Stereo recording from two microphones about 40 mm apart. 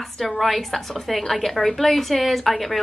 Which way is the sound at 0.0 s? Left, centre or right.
Centre.